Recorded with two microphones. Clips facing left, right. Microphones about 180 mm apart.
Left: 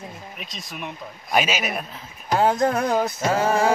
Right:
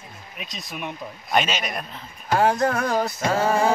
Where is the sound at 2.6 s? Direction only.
20° left (ahead or behind).